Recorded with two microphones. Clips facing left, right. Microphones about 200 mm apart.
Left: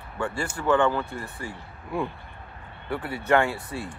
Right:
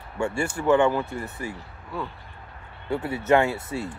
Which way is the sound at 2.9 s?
25° right (ahead or behind).